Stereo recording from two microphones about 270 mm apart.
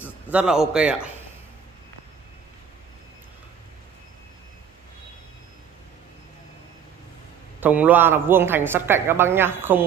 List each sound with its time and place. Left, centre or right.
0.3 s a man's voice: centre
7.6 s speech: centre